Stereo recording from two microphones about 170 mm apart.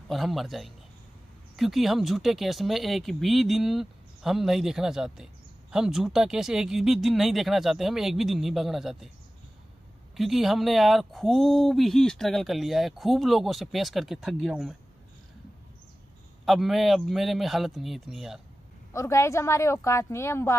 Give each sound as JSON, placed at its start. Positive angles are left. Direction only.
{"t": 0.1, "sound": "speech", "side_deg": 0}
{"t": 10.1, "sound": "speech", "side_deg": 0}
{"t": 16.4, "sound": "speech", "side_deg": 0}
{"t": 18.9, "sound": "a woman's voice", "side_deg": 15}